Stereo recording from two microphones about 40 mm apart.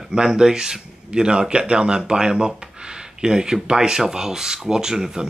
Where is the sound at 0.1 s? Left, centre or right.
Centre.